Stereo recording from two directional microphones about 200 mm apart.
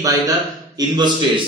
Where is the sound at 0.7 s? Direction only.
20° right (ahead or behind).